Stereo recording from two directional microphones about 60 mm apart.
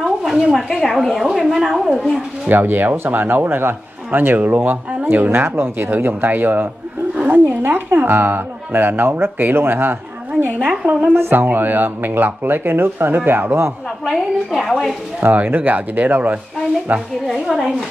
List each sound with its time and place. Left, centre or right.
0.0 s a sound: centre
0.7 s a woman's voice: centre
2.4 s a man's voice: right
10.6 s a woman's voice: centre
11.1 s a man's voice: right
14.0 s a woman's voice: centre
15.3 s speech: right
17.3 s a woman's voice: centre